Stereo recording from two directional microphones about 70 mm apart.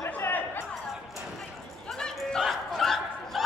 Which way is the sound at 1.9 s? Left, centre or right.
Centre.